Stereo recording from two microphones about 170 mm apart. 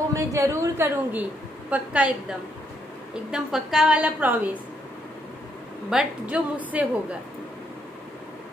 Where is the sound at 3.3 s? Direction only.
5° right (ahead or behind).